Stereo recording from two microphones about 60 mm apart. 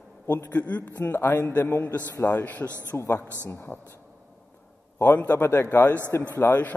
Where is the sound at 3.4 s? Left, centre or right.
Left.